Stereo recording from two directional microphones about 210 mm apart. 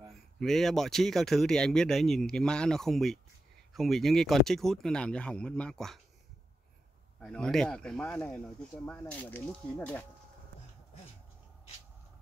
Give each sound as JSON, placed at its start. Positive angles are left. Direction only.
{"t": 0.4, "sound": "speech", "side_deg": 0}
{"t": 7.2, "sound": "speech", "side_deg": 5}